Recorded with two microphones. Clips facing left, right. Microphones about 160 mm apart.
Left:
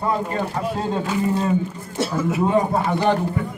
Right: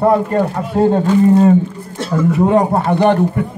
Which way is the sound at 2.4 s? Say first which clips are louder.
Right 5 dB; 65° right (ahead or behind).